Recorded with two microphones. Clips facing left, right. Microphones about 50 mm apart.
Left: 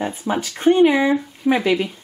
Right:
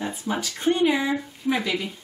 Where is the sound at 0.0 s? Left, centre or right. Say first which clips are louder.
Left 5 dB; left.